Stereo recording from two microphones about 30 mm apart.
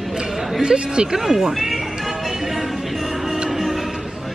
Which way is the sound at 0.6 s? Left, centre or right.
Right.